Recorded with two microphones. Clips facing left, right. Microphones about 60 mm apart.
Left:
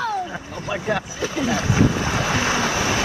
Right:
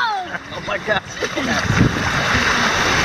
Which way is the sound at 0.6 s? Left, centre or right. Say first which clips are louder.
Right 3 dB; right.